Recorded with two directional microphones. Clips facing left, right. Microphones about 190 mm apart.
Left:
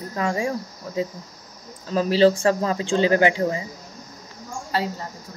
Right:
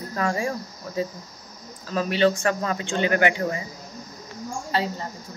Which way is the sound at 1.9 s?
30° left (ahead or behind).